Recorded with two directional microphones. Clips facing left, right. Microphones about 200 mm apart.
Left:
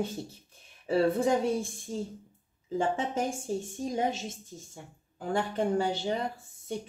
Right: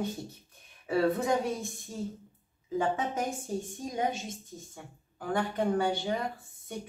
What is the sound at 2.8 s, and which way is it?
Speech, 30° left (ahead or behind).